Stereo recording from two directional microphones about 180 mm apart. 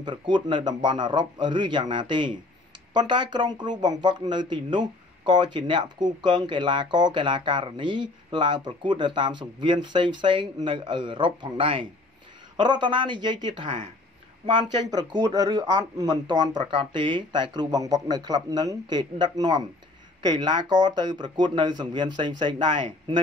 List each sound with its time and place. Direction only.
0.0 s speech: 25° right (ahead or behind)